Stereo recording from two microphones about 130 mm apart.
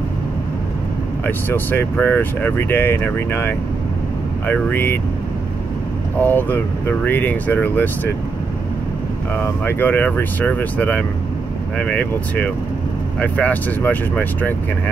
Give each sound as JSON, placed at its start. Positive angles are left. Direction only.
{"t": 1.2, "sound": "speech", "side_deg": 15}
{"t": 6.1, "sound": "speech", "side_deg": 15}
{"t": 9.3, "sound": "speech", "side_deg": 15}